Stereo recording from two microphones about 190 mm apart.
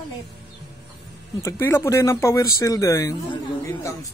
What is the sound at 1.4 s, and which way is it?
A man's voice, 15° left (ahead or behind).